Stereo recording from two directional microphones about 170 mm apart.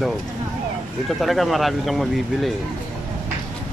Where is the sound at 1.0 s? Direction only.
Centre (ahead or behind).